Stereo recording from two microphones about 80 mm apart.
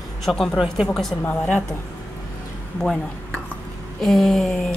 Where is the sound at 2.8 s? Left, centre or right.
Centre.